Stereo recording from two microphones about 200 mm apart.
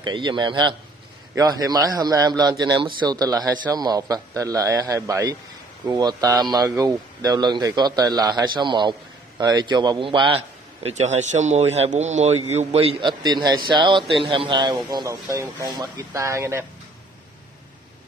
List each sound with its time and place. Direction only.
0.0 s a man's voice: 25° right (ahead or behind)